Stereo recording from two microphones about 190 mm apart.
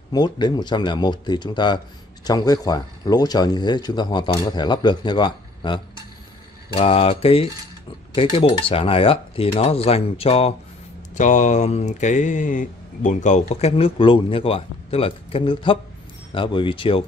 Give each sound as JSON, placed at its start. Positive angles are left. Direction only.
{"t": 0.1, "sound": "speech", "side_deg": 20}